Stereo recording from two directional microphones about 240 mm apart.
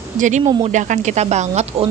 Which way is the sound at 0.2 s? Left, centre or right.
Right.